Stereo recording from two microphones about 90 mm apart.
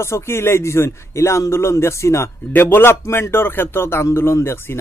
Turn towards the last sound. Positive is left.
turn(degrees=30)  # may be behind; listen again after turning